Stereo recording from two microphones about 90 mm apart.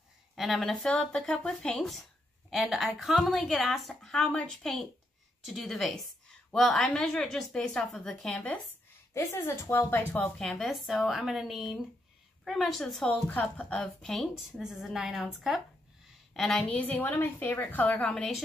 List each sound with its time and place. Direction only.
0.4 s a woman's voice: centre (ahead or behind)
2.5 s a woman's voice: 10° right (ahead or behind)
9.1 s a woman's voice: 30° left (ahead or behind)
10.4 s a woman's voice: centre (ahead or behind)
13.3 s a woman's voice: 15° left (ahead or behind)
16.8 s a woman's voice: 20° left (ahead or behind)
18.1 s a woman's voice: 5° left (ahead or behind)